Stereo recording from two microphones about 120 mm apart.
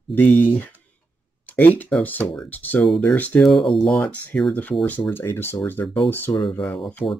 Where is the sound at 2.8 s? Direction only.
5° left (ahead or behind).